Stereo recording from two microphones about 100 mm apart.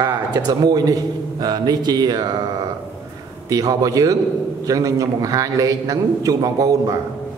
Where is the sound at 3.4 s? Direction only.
35° right (ahead or behind).